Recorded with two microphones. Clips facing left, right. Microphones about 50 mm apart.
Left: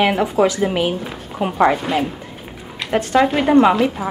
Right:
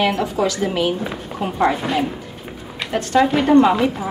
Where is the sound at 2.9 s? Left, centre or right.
Left.